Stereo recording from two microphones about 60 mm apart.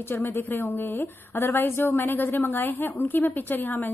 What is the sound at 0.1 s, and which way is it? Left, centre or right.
A woman's voice, left.